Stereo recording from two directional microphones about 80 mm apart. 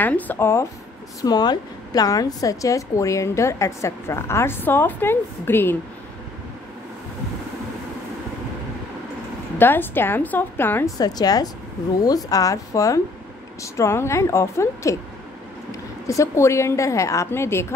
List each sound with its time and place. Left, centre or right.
0.0 s a woman's voice: left
1.2 s a woman's voice: left
9.6 s a woman's voice: left
11.0 s a woman's voice: left
16.1 s a woman's voice: left